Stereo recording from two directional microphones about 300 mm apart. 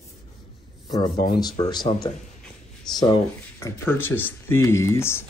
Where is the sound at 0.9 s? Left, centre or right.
Centre.